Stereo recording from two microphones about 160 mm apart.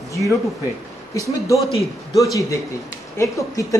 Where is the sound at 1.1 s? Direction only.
20° left (ahead or behind).